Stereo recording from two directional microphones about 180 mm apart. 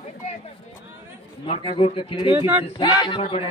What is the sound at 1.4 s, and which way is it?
Speech, 35° left (ahead or behind).